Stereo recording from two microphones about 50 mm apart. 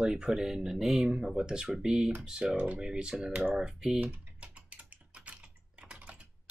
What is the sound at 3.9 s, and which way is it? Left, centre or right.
Typing, right.